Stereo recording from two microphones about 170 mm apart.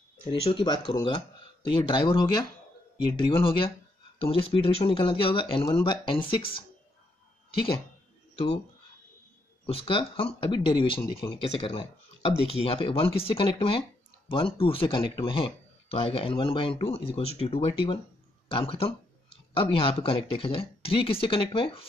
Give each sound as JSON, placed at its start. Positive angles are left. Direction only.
{"t": 0.3, "sound": "speech", "side_deg": 30}
{"t": 9.7, "sound": "speech", "side_deg": 30}